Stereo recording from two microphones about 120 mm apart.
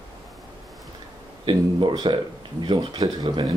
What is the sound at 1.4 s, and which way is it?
Speech, 40° right (ahead or behind).